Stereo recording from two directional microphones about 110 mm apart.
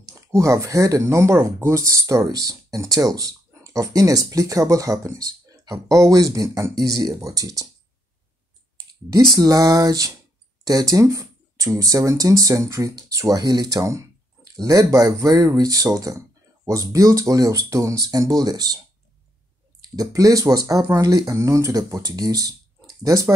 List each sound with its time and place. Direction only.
0.4 s speech: 30° right (ahead or behind)
8.7 s speech: 35° right (ahead or behind)
19.8 s speech: 35° right (ahead or behind)